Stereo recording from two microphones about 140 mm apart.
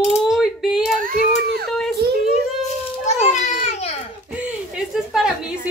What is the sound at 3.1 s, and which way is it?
A child's voice, 55° left (ahead or behind).